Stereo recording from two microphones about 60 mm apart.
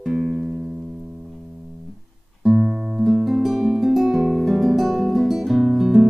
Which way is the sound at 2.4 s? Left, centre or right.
Centre.